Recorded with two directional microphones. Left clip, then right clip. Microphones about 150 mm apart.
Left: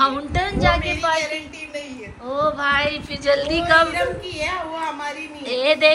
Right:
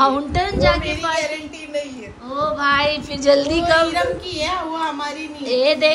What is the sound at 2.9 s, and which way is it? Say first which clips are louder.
A woman's voice: right 4 dB; 20° right (ahead or behind).